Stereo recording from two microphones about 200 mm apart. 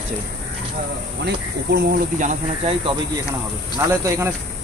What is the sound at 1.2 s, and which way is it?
Speech, 55° right (ahead or behind).